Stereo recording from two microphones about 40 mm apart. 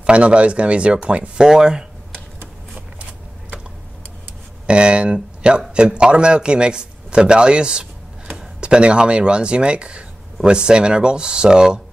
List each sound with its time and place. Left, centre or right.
0.0 s speech: right
2.7 s a sound: right
4.6 s a man's voice: right